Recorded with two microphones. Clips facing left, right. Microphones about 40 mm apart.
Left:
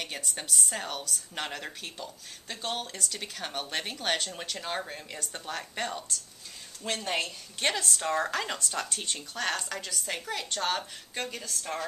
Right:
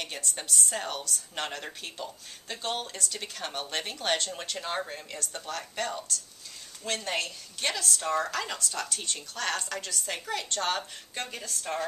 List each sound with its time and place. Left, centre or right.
0.0 s speech: centre
5.2 s a woman's voice: centre
9.5 s speech: centre